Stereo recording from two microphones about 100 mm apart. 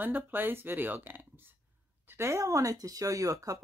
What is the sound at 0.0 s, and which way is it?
Speech, 20° right (ahead or behind).